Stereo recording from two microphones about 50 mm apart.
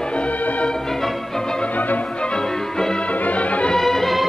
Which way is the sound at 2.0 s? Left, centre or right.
Left.